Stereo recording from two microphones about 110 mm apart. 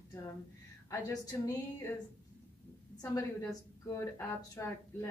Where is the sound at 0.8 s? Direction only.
35° left (ahead or behind).